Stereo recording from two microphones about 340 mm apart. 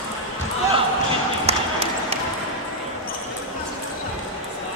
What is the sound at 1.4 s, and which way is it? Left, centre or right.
Basketball bounce, centre.